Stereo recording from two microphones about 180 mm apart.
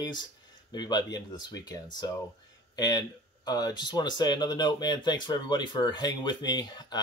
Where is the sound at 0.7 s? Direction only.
25° left (ahead or behind).